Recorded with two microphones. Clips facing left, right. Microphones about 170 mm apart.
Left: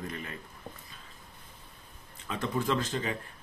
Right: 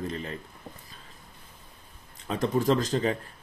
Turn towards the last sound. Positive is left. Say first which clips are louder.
# right 6 dB
turn(degrees=-40)  # may be behind; listen again after turning